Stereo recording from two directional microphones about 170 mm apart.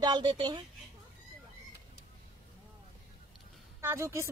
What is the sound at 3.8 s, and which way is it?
Speech, 15° right (ahead or behind).